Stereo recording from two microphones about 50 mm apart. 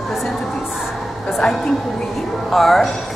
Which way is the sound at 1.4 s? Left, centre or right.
Centre.